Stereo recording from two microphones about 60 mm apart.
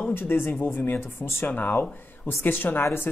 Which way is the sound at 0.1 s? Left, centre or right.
Left.